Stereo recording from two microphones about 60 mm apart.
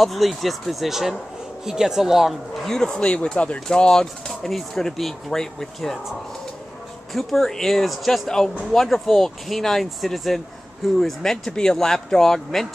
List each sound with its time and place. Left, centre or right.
0.0 s speech: centre
2.6 s speech: centre
7.2 s speech: centre